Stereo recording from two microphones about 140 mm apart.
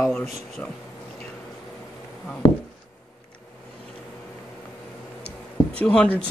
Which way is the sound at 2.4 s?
35° left (ahead or behind).